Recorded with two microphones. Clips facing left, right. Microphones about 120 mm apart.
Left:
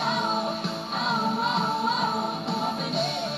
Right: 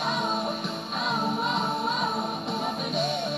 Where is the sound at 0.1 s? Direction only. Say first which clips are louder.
Left 1 dB; 30° left (ahead or behind).